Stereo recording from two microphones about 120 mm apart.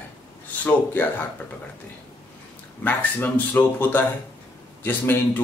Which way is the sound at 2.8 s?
15° left (ahead or behind).